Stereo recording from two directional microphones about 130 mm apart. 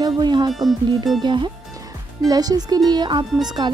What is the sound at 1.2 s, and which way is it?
Speech, 35° right (ahead or behind).